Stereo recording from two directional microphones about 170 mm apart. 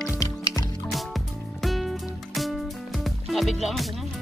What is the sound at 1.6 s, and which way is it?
Music, centre (ahead or behind).